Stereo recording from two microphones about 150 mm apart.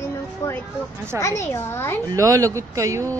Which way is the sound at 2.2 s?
20° right (ahead or behind).